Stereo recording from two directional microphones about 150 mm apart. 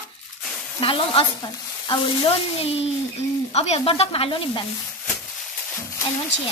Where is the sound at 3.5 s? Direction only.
45° left (ahead or behind).